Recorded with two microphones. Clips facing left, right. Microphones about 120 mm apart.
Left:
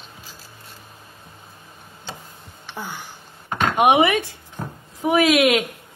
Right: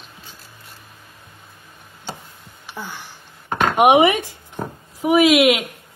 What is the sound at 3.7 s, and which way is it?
A woman's voice, 20° right (ahead or behind).